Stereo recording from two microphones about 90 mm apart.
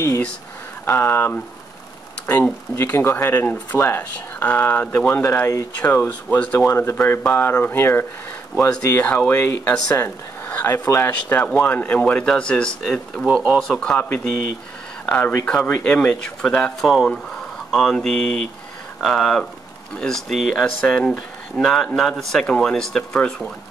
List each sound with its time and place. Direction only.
0.8 s speech: 25° left (ahead or behind)
2.7 s speech: 25° left (ahead or behind)
5.8 s speech: 20° left (ahead or behind)
6.7 s speech: 25° left (ahead or behind)
8.9 s speech: 15° left (ahead or behind)
11.1 s speech: 15° left (ahead or behind)
15.0 s speech: 15° left (ahead or behind)